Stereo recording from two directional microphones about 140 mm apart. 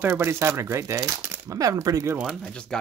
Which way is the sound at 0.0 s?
15° right (ahead or behind).